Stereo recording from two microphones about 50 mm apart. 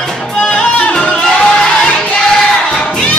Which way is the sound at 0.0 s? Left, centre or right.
Centre.